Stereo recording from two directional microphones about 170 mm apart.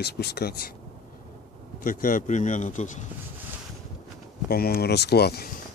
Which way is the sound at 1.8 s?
55° left (ahead or behind).